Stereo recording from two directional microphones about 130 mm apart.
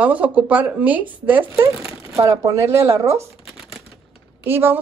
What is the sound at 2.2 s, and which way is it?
Speech, 25° right (ahead or behind).